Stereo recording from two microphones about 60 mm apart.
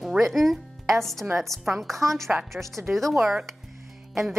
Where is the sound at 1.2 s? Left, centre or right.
Right.